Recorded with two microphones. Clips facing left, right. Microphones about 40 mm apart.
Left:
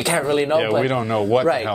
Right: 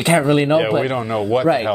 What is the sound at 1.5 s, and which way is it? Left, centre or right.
Speech, centre.